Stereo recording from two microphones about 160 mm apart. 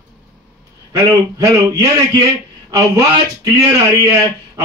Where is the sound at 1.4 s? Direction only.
20° right (ahead or behind).